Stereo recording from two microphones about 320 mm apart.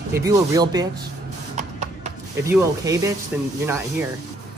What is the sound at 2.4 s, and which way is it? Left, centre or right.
Speech, centre.